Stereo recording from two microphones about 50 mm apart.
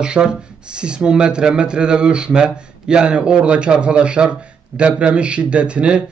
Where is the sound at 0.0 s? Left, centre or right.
Centre.